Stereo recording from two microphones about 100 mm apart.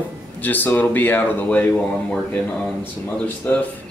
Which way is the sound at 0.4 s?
20° left (ahead or behind).